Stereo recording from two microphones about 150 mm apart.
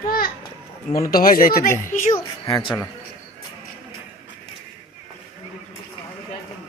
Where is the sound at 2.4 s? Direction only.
35° left (ahead or behind).